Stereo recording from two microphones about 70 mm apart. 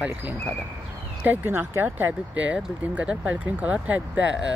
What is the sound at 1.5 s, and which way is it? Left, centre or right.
Speech, right.